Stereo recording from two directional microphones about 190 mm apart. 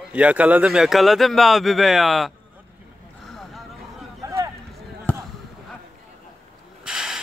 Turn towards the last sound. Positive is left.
turn(degrees=0)  # may be behind; listen again after turning